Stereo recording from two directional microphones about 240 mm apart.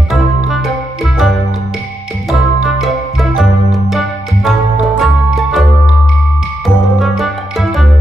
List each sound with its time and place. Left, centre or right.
0.1 s music: centre
2.6 s music: centre
7.0 s music: centre